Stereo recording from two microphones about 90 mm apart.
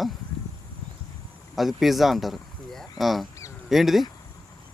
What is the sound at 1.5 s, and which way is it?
Speech, centre (ahead or behind).